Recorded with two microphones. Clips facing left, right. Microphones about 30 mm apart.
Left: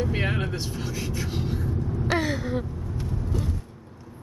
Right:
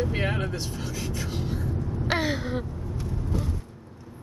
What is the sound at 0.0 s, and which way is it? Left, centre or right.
Speech, centre.